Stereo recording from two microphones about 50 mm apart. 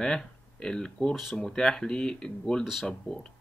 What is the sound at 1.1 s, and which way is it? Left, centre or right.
Speech, centre.